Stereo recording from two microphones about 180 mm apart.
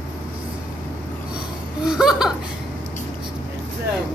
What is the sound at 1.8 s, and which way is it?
Laughter, 5° right (ahead or behind).